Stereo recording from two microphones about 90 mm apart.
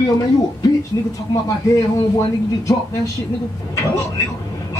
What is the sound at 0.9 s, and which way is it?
Speech, 40° left (ahead or behind).